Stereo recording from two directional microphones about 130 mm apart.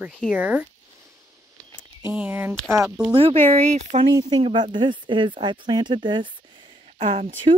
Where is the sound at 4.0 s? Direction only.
35° right (ahead or behind).